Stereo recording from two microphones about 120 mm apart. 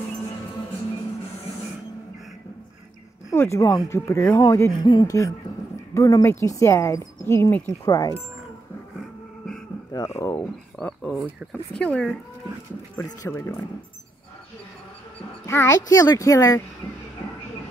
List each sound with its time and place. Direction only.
3.3 s a woman's voice: 25° left (ahead or behind)
4.8 s speech: 40° left (ahead or behind)
5.9 s a woman's voice: 25° left (ahead or behind)
7.8 s speech: 30° left (ahead or behind)
9.9 s a woman's voice: 25° left (ahead or behind)
10.8 s speech: 5° left (ahead or behind)
12.9 s a woman's voice: 30° left (ahead or behind)
15.4 s a child's voice: 25° left (ahead or behind)